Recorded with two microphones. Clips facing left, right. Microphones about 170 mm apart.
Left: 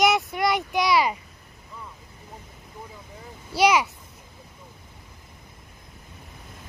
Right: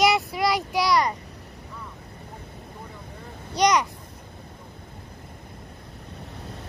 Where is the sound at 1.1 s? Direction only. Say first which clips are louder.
Right 7 dB; 70° right (ahead or behind).